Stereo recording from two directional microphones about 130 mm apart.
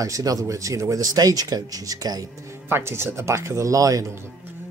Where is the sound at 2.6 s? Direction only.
20° right (ahead or behind).